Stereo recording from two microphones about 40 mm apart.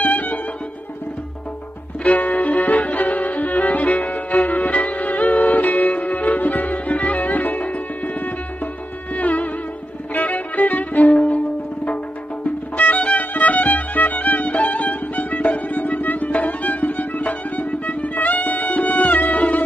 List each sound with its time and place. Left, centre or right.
0.0 s music: left
2.0 s music: left
10.1 s violin: left
11.1 s music: left